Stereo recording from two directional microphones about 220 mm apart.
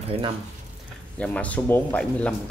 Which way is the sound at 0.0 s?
25° right (ahead or behind).